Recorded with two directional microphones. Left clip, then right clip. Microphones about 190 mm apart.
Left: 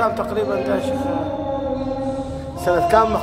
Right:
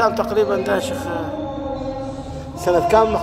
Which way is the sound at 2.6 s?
10° right (ahead or behind).